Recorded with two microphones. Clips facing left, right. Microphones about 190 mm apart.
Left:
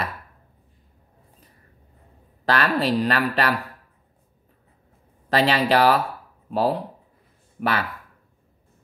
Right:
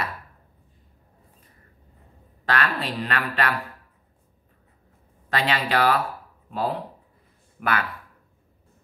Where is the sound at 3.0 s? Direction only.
35° left (ahead or behind).